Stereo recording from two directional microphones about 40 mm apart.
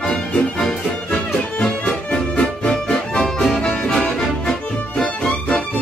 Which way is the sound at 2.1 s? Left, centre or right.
Left.